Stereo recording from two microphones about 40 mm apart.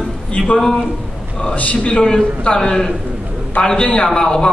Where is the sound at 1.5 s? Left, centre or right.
Left.